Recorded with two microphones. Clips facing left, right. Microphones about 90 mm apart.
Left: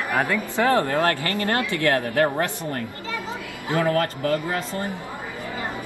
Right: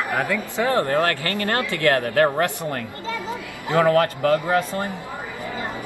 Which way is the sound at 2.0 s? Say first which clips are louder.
Right 2 dB; 40° right (ahead or behind).